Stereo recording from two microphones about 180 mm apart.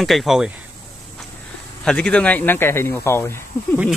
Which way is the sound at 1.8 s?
5° left (ahead or behind).